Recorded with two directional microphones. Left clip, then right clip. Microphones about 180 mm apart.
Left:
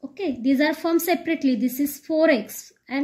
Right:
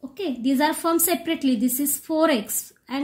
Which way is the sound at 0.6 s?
60° right (ahead or behind).